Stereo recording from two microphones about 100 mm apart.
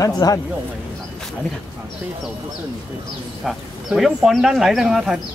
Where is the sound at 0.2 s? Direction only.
40° left (ahead or behind).